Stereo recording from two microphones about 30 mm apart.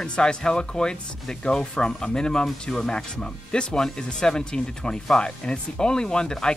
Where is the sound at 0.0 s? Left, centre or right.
Left.